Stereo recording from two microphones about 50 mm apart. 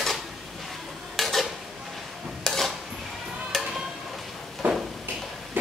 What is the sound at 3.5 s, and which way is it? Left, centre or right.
Stir, centre.